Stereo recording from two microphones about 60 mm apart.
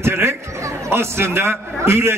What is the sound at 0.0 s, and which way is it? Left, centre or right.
Chatter, right.